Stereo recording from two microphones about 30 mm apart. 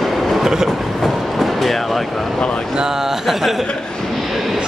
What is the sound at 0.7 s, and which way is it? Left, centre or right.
Train, centre.